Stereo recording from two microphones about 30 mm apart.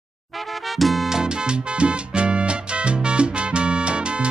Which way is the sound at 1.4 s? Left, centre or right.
Right.